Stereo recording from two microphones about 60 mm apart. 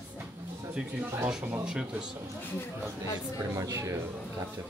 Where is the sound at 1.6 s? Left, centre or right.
Centre.